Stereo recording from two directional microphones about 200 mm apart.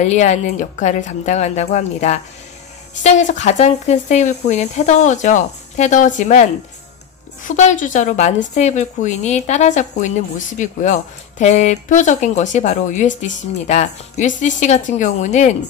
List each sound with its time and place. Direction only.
0.0 s a woman's voice: 35° left (ahead or behind)
7.4 s a woman's voice: 40° left (ahead or behind)